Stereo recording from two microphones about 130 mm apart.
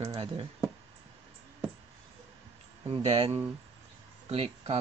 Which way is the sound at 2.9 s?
50° right (ahead or behind).